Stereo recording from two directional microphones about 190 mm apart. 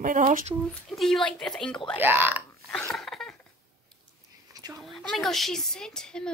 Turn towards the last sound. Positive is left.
turn(degrees=5)  # may be behind; listen again after turning